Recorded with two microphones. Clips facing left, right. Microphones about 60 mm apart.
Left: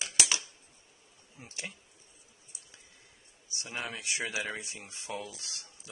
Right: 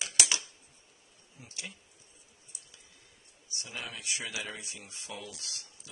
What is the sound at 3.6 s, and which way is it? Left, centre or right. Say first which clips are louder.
Speech: left 3 dB; left.